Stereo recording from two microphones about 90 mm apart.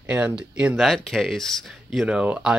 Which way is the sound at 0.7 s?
Centre (ahead or behind).